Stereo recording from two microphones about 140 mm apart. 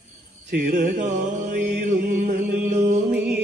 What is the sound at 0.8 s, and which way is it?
Mantra, 65° right (ahead or behind).